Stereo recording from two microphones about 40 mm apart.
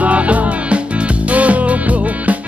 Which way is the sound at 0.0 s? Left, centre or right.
Right.